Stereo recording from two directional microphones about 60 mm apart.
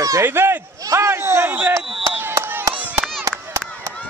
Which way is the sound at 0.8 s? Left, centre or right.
Right.